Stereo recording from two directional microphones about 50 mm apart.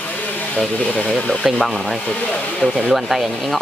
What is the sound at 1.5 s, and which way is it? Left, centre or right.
Speech, centre.